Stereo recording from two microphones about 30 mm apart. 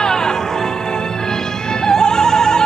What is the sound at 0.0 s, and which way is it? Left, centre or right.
Music, left.